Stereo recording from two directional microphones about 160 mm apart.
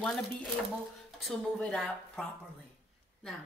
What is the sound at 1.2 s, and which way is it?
Speech, centre (ahead or behind).